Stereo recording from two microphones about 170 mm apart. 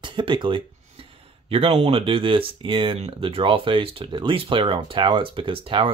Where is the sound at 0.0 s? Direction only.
30° right (ahead or behind).